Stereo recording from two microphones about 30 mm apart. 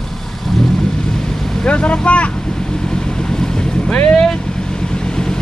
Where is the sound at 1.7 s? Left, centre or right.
Left.